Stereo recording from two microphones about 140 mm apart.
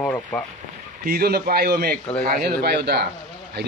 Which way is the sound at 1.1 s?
90° right.